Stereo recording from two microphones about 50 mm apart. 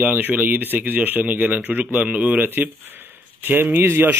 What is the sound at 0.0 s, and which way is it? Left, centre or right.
Speech, right.